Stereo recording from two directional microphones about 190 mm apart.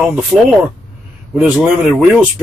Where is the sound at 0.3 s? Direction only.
Centre (ahead or behind).